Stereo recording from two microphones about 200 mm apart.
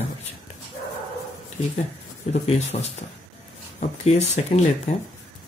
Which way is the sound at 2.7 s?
30° left (ahead or behind).